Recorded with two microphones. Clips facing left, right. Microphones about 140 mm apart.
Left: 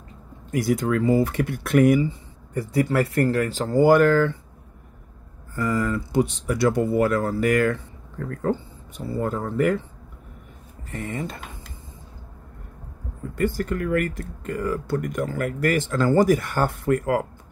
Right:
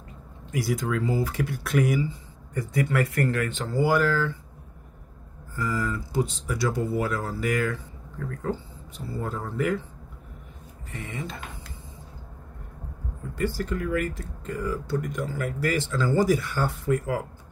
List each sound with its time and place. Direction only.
0.5 s speech: 50° left (ahead or behind)
2.5 s speech: 30° left (ahead or behind); by 4.4 s 60° left (ahead or behind)
5.6 s speech: 55° left (ahead or behind)
10.9 s speech: 45° left (ahead or behind)
13.4 s speech: 55° left (ahead or behind)